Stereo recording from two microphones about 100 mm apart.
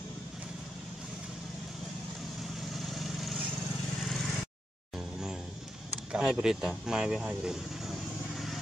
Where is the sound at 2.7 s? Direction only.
Centre (ahead or behind).